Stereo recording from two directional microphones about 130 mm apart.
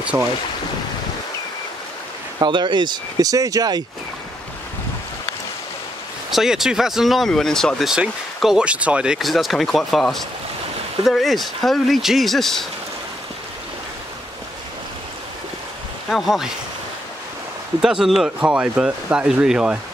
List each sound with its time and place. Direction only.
0.1 s speech: 15° right (ahead or behind)
2.3 s speech: 35° right (ahead or behind)
6.3 s speech: 5° right (ahead or behind)
16.1 s speech: centre (ahead or behind)
17.8 s speech: centre (ahead or behind)